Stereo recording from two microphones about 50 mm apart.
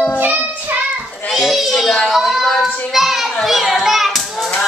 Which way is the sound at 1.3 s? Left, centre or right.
Centre.